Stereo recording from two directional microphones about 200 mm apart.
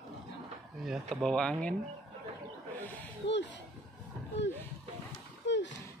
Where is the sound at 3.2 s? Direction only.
60° left (ahead or behind).